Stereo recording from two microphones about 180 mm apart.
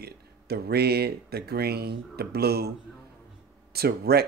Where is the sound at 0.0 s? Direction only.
60° right (ahead or behind).